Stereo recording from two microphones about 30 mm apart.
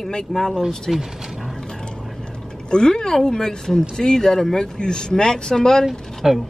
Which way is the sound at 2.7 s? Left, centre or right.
Left.